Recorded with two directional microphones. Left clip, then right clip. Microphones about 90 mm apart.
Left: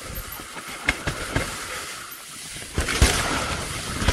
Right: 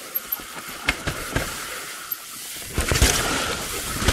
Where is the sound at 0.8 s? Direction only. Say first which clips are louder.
Even; 35° right (ahead or behind).